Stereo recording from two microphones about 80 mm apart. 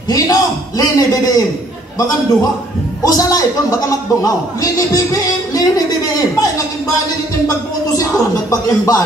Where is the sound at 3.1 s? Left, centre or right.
Left.